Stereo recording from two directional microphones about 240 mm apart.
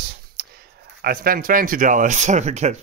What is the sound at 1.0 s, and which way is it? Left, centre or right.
Speech, right.